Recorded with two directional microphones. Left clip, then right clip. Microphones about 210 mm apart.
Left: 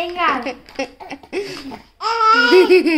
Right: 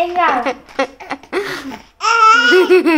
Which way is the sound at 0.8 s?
35° right (ahead or behind).